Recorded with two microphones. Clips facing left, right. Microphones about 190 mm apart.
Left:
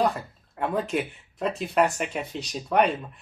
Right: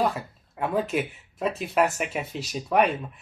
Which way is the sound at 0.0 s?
Centre (ahead or behind).